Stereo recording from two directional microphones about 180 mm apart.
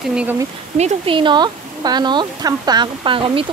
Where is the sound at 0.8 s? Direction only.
35° right (ahead or behind).